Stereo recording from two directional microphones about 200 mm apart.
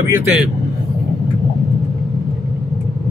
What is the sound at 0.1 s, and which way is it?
Speech, 10° right (ahead or behind).